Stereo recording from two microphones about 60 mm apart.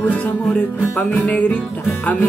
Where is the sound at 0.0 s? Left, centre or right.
Left.